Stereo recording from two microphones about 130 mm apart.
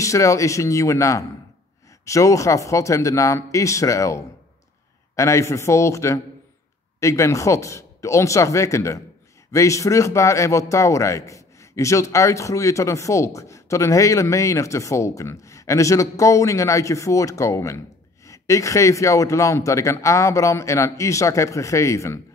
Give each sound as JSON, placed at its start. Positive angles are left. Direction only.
{"t": 0.0, "sound": "speech", "side_deg": 25}